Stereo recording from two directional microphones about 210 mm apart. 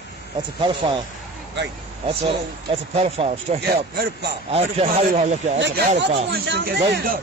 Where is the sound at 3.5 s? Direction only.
50° right (ahead or behind).